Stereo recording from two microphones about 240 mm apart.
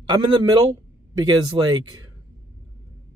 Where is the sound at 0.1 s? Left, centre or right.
Centre.